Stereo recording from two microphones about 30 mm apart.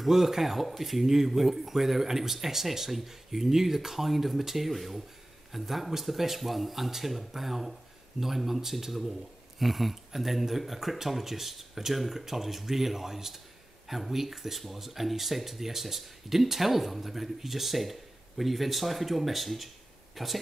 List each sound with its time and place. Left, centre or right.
0.0 s speech: centre